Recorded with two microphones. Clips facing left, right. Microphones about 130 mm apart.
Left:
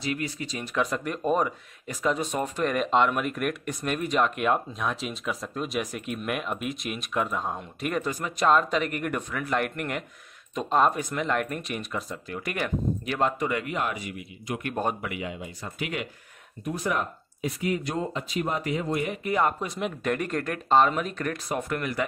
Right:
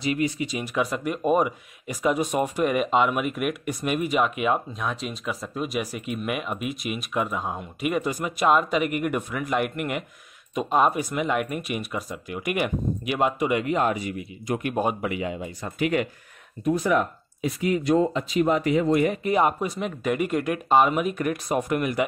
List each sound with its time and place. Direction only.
0.0 s speech: 20° right (ahead or behind); by 14.6 s 35° right (ahead or behind)
14.6 s speech: 10° right (ahead or behind)
15.0 s speech: 30° right (ahead or behind)
15.6 s speech: 45° right (ahead or behind)
18.1 s speech: 90° right
19.2 s speech: 20° right (ahead or behind)
19.6 s speech: 5° right (ahead or behind)